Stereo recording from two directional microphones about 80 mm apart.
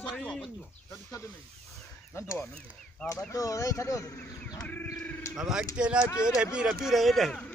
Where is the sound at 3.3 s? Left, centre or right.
Left.